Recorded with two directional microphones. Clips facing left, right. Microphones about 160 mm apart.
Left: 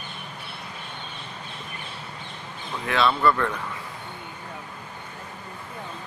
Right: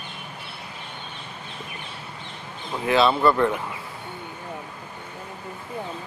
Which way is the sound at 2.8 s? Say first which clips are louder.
Right 3 dB; 30° right (ahead or behind).